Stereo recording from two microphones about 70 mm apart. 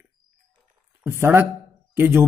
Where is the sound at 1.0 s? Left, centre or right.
Right.